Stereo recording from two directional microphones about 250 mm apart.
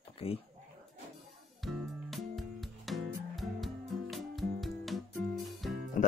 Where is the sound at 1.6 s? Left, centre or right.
Centre.